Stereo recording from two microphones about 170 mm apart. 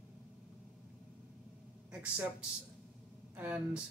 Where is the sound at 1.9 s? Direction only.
5° right (ahead or behind).